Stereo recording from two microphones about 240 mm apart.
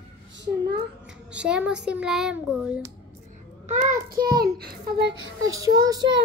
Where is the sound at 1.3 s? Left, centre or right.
Centre.